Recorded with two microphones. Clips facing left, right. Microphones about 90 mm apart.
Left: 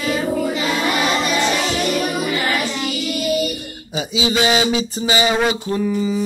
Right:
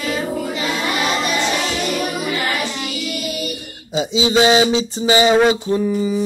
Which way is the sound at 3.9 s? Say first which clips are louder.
Right 4 dB; 30° right (ahead or behind).